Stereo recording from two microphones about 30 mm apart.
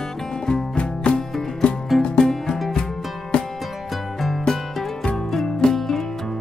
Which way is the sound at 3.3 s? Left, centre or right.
Left.